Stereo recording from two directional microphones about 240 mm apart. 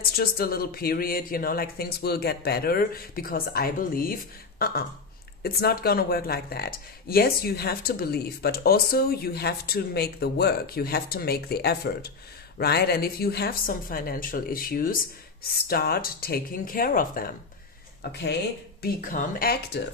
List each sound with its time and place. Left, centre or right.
0.0 s speech: left